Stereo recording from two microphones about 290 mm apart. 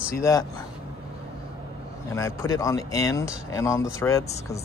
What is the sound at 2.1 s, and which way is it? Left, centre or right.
Speech, centre.